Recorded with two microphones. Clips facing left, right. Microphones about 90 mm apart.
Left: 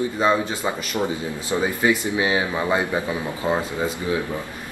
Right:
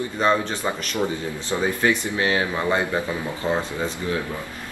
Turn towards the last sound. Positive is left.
turn(degrees=10)  # may be behind; listen again after turning